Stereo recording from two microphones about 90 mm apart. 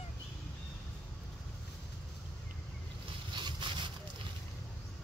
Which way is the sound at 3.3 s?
65° right (ahead or behind).